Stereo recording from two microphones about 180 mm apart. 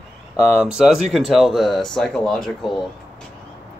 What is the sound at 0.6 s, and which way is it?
Speech, 5° right (ahead or behind).